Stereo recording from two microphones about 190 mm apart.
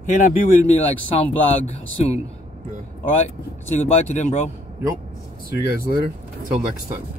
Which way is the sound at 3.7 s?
35° left (ahead or behind).